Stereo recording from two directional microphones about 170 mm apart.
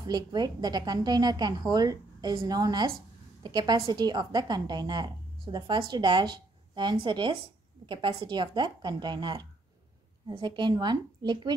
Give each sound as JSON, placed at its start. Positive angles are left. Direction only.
{"t": 0.0, "sound": "a woman's voice", "side_deg": -25}